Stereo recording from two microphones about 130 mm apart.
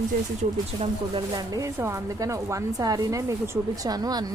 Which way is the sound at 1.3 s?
25° right (ahead or behind).